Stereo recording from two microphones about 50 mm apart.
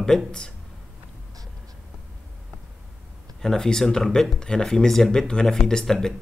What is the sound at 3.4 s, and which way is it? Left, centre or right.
Speech, centre.